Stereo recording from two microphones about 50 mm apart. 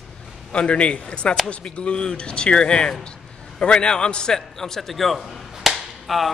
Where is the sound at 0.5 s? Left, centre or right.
Left.